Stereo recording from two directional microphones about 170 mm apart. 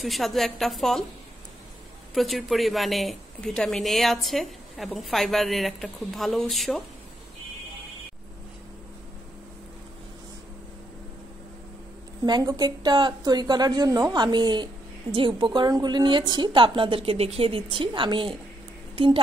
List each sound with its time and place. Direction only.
0.0 s a woman's voice: centre (ahead or behind)
2.1 s a woman's voice: centre (ahead or behind)
12.3 s a woman's voice: 25° right (ahead or behind)